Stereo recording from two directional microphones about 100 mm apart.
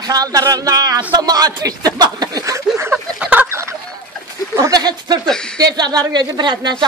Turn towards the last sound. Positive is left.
turn(degrees=-50)  # may be behind; listen again after turning